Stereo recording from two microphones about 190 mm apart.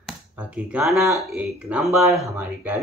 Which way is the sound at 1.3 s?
5° right (ahead or behind).